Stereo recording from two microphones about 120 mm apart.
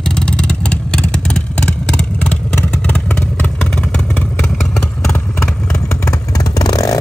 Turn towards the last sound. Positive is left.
turn(degrees=30)  # may be behind; listen again after turning